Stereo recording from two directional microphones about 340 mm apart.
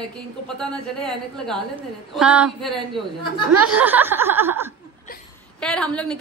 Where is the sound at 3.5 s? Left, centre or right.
Right.